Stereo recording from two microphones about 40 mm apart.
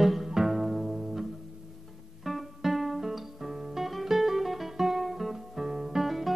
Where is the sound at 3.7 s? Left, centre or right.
Centre.